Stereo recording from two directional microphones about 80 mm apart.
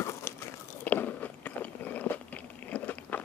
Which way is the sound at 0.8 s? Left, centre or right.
Left.